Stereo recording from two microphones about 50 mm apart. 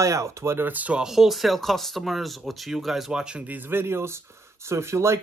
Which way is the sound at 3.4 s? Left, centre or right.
Right.